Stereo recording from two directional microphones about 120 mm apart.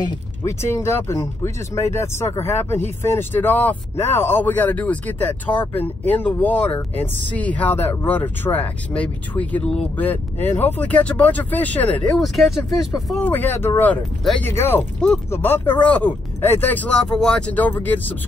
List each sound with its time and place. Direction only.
0.0 s speech: 25° left (ahead or behind)
12.2 s speech: centre (ahead or behind)
13.2 s speech: 15° left (ahead or behind)